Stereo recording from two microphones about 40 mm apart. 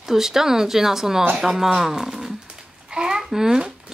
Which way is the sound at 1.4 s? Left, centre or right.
Centre.